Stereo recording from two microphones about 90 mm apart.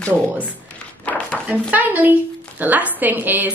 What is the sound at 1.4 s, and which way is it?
A woman's voice, 15° right (ahead or behind).